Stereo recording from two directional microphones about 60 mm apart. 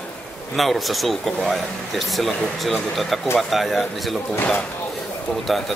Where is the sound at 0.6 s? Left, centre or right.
Centre.